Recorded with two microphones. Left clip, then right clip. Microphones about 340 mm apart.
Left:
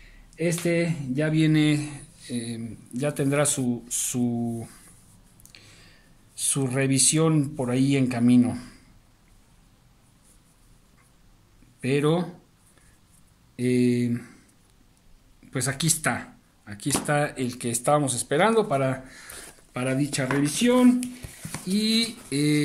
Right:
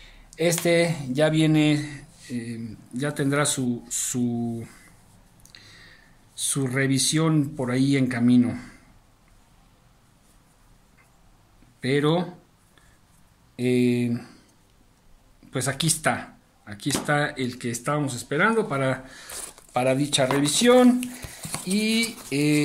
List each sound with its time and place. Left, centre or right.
0.4 s speech: centre
5.4 s a sound: centre
6.3 s speech: centre
11.8 s speech: centre
13.6 s speech: centre
15.5 s speech: centre
19.7 s speech: centre
20.5 s speech: right
21.7 s speech: centre